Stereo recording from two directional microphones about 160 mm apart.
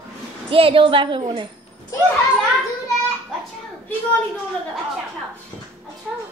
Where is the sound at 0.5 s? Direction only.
35° right (ahead or behind).